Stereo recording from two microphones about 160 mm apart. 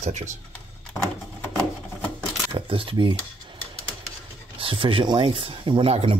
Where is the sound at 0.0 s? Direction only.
45° right (ahead or behind).